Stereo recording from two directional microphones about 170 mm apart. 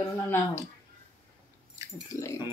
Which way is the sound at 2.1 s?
20° left (ahead or behind).